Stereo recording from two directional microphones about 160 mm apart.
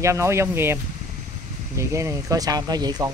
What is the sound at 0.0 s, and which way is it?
Speech, 15° right (ahead or behind).